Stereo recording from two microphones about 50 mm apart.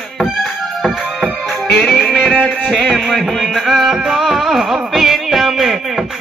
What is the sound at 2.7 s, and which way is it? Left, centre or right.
Music, centre.